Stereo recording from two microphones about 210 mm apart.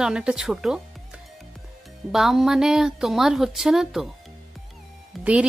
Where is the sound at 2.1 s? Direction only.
Centre (ahead or behind).